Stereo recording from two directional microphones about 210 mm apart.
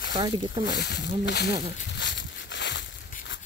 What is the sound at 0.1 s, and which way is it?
Speech, 20° right (ahead or behind).